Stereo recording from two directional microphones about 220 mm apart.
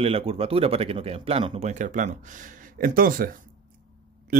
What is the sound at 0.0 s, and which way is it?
Speech, 25° right (ahead or behind).